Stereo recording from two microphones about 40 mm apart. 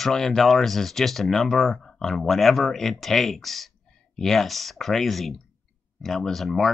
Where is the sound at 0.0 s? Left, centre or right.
Centre.